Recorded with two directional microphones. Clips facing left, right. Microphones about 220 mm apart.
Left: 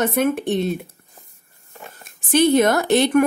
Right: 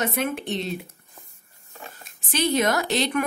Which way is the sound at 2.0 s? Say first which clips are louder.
Left 9 dB; 50° left (ahead or behind).